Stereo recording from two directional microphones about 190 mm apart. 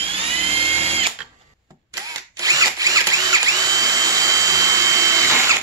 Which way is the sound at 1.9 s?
20° right (ahead or behind).